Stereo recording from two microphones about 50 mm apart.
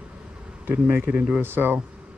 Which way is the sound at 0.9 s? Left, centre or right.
Right.